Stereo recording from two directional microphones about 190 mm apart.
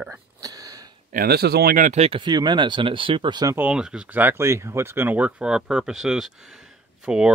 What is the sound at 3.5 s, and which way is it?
Speech, 5° right (ahead or behind).